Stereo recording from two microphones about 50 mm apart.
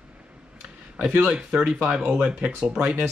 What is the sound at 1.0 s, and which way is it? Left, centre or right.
Speech, right.